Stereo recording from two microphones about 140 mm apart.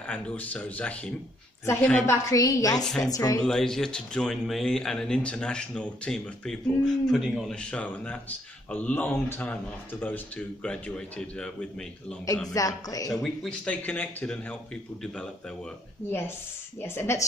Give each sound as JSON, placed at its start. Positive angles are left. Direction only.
{"t": 0.0, "sound": "speech", "side_deg": 10}
{"t": 2.0, "sound": "a woman's voice", "side_deg": 25}
{"t": 3.4, "sound": "speech", "side_deg": 5}
{"t": 12.5, "sound": "a woman's voice", "side_deg": 25}
{"t": 13.1, "sound": "speech", "side_deg": 0}
{"t": 16.1, "sound": "speech", "side_deg": 15}